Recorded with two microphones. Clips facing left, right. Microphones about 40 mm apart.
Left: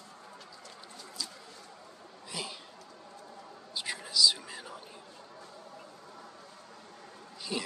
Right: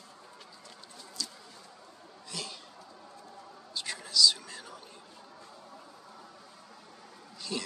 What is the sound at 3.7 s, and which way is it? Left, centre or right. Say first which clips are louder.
Whispering: right 1 dB; centre.